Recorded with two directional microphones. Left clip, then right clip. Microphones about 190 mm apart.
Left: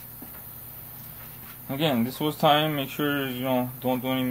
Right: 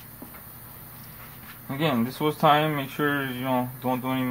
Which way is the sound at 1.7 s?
10° left (ahead or behind).